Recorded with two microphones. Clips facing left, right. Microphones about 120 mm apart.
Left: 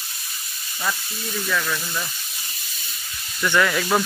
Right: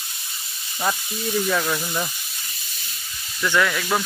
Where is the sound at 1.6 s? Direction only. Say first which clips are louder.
Right 3 dB; 25° right (ahead or behind).